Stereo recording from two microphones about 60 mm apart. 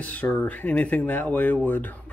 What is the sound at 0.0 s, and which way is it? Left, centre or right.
Speech, left.